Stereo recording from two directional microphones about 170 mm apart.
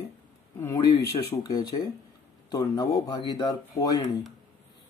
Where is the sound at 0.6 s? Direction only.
15° left (ahead or behind).